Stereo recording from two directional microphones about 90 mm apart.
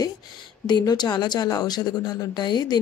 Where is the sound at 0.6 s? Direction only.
50° left (ahead or behind).